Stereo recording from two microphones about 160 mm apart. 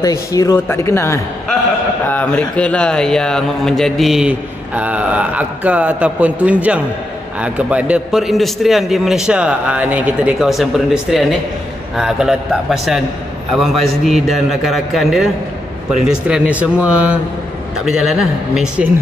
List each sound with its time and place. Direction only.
0.0 s speech: 20° left (ahead or behind); by 18.9 s 5° right (ahead or behind)